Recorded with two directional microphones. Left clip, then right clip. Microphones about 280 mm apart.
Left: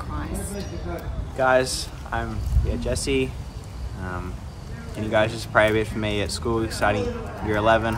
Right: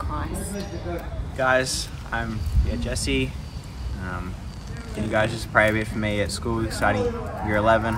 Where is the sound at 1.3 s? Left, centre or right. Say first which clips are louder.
Left 2 dB; centre.